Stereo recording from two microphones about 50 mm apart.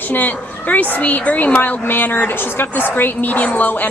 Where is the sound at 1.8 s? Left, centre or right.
Left.